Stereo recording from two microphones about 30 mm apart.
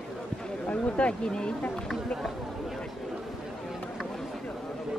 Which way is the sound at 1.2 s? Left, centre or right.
Left.